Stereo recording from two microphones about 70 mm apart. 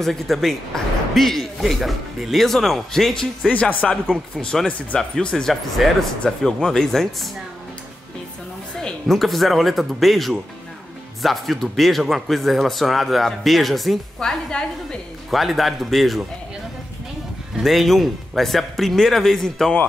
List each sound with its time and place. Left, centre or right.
0.0 s a man's voice: centre
3.4 s speech: centre
5.5 s a man's voice: centre
8.7 s a man's voice: centre
15.3 s a man's voice: centre
17.6 s a man's voice: centre